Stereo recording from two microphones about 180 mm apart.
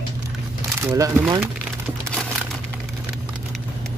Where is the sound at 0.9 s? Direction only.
15° right (ahead or behind).